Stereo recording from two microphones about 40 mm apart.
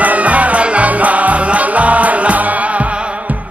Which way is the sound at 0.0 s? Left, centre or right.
Right.